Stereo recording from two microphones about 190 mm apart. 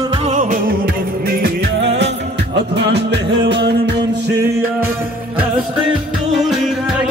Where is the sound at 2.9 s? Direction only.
65° right (ahead or behind).